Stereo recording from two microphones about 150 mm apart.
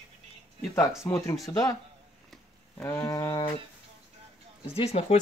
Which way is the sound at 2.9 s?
20° left (ahead or behind).